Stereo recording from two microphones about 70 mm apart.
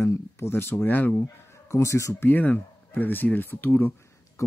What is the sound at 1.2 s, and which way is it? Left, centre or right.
Speech, left.